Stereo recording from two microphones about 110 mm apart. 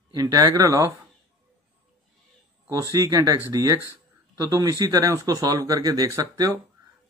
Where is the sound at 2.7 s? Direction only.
30° right (ahead or behind).